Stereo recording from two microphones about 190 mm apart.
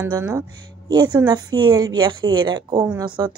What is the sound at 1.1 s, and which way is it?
A woman's voice, 20° right (ahead or behind).